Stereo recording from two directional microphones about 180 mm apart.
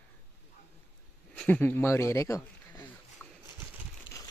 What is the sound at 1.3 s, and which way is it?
Speech, 10° left (ahead or behind).